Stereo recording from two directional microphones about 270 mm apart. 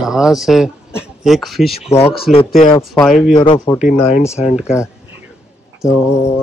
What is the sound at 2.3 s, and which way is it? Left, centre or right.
Speech, left.